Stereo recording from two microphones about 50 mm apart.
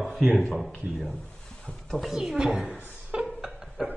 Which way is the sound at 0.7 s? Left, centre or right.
Centre.